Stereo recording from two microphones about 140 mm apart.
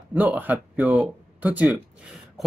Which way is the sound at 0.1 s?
10° right (ahead or behind).